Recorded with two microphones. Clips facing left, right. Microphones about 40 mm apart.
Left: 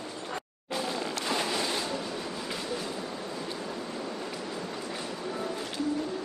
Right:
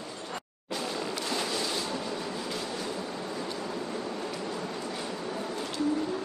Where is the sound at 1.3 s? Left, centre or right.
Left.